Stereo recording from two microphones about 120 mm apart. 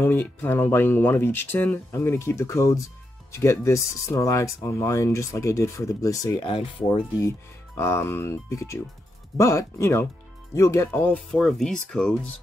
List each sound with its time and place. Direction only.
0.0 s speech: 20° left (ahead or behind)
6.4 s speech: 40° left (ahead or behind)
7.2 s speech: 20° left (ahead or behind)
11.3 s speech: 5° left (ahead or behind)